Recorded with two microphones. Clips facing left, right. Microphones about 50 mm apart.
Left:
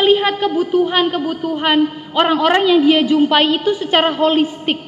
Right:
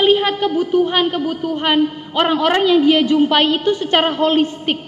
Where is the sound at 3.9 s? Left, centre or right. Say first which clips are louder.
Left 2 dB; centre.